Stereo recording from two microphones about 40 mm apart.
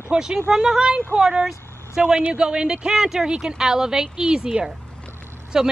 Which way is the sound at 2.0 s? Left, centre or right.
Right.